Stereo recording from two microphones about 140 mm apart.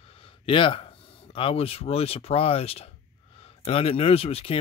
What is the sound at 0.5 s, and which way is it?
Speech, 40° left (ahead or behind).